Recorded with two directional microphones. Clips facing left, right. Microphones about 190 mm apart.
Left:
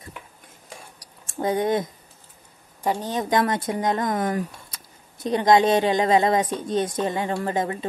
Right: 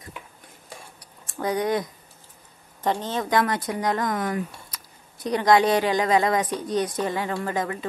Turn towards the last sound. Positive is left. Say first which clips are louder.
# left 2 dB
turn(degrees=25)  # may be behind; listen again after turning